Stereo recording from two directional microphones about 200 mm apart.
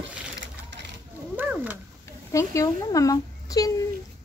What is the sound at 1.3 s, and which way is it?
Cat, 10° right (ahead or behind).